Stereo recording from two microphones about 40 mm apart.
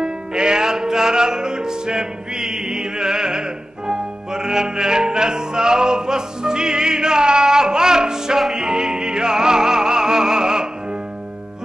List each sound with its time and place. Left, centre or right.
0.0 s music: centre